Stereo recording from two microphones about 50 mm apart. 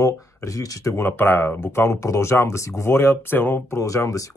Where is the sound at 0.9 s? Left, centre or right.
Left.